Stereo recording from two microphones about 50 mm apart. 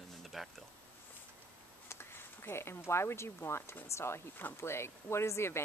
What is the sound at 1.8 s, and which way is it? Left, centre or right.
Speech, left.